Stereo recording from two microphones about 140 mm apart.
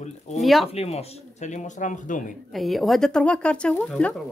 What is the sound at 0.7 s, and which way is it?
Speech, 50° left (ahead or behind).